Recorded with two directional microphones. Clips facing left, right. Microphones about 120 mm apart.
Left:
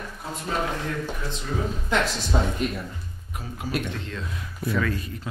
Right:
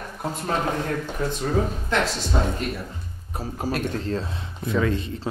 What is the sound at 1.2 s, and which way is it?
Speech, 45° right (ahead or behind).